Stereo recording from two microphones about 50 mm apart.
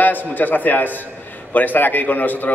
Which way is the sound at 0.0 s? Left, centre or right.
Left.